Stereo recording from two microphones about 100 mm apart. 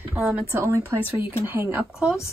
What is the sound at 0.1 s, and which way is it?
Speech, 15° right (ahead or behind).